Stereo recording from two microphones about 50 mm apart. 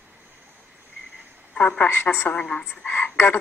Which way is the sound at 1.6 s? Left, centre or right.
Left.